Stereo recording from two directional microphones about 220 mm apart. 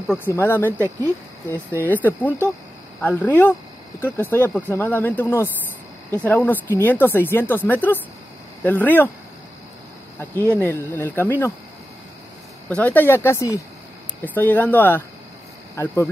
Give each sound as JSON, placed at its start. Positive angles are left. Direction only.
{"t": 0.1, "sound": "speech", "side_deg": 10}
{"t": 10.6, "sound": "speech", "side_deg": 10}
{"t": 12.6, "sound": "speech", "side_deg": 5}